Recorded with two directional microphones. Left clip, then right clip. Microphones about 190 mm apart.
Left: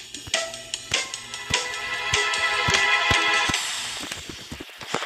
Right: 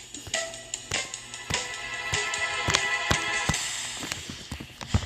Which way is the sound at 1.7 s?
55° left (ahead or behind).